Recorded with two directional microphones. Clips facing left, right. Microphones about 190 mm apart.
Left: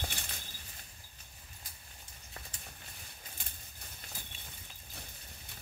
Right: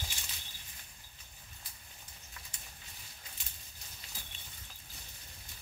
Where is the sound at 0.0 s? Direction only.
60° left (ahead or behind).